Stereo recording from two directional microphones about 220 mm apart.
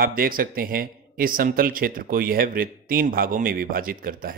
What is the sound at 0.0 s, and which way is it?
Speech, 40° right (ahead or behind).